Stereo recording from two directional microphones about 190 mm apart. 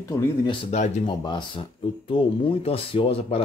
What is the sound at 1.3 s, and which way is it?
Speech, 25° left (ahead or behind).